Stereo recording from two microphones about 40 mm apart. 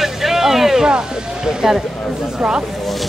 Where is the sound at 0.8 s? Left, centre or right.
Centre.